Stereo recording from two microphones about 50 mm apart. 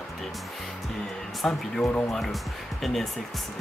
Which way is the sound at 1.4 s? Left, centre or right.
Centre.